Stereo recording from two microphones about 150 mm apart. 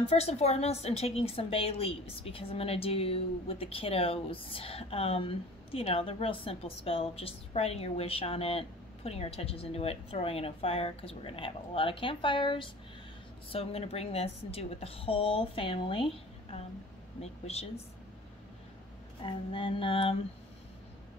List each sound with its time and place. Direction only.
0.1 s a woman's voice: 45° left (ahead or behind)
19.2 s a woman's voice: 35° left (ahead or behind)